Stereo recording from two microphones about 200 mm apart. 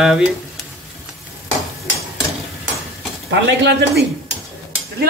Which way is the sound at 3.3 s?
60° right (ahead or behind).